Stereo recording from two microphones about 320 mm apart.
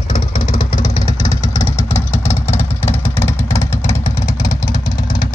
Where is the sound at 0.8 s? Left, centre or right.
Centre.